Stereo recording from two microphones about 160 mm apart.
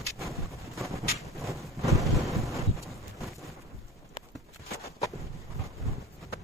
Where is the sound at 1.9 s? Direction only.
Centre (ahead or behind).